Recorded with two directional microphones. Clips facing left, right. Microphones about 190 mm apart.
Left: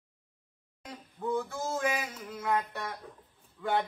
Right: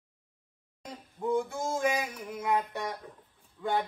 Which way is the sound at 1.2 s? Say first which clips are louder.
Right 3 dB; 15° right (ahead or behind).